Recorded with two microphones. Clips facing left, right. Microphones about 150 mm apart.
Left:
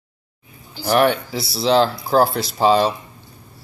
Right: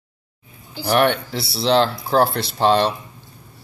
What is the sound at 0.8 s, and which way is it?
Speech, centre (ahead or behind).